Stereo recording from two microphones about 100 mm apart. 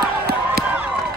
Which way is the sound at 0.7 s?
15° right (ahead or behind).